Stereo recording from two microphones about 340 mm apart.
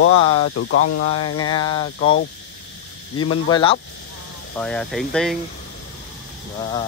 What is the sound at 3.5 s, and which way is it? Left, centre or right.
Speech, centre.